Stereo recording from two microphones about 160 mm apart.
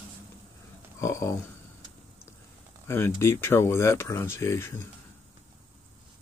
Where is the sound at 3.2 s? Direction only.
15° left (ahead or behind).